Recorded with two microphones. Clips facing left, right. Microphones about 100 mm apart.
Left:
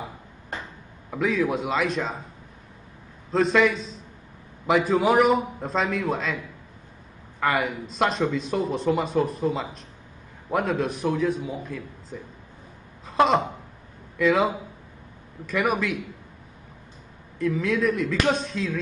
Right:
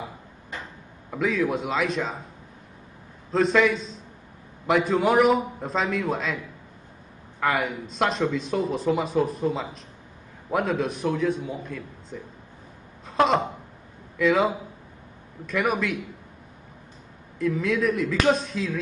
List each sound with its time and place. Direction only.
1.1 s a man's voice: centre (ahead or behind)
3.3 s a man's voice: centre (ahead or behind)
17.4 s a man's voice: centre (ahead or behind)